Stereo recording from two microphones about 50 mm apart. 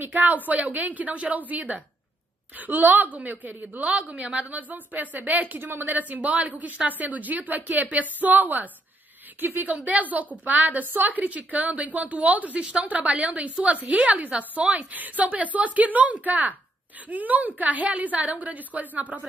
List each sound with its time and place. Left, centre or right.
0.0 s a woman's voice: right